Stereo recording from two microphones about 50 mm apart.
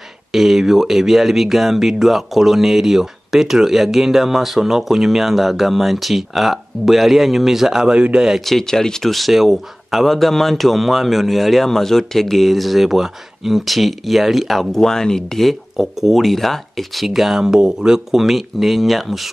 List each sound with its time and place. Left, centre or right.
0.3 s speech: centre
7.9 s speech: centre
8.5 s speech: centre
9.1 s speech: centre
15.8 s speech: centre